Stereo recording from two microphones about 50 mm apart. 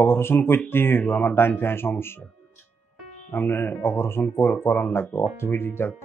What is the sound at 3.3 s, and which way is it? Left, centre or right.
Speech, left.